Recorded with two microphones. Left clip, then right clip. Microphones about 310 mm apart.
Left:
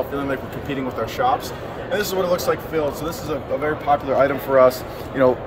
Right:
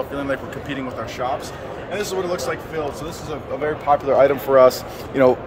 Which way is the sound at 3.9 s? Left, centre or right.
Right.